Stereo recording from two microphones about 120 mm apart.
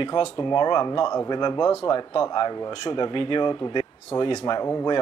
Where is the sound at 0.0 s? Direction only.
45° left (ahead or behind).